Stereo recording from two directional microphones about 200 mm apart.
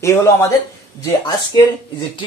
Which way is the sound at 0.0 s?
15° left (ahead or behind).